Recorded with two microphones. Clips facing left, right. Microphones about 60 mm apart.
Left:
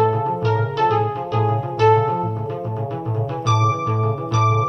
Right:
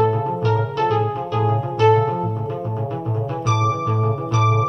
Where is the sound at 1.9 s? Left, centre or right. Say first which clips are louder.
Left 1 dB; left.